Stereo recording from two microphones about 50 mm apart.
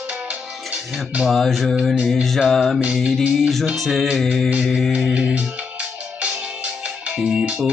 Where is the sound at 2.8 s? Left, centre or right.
Right.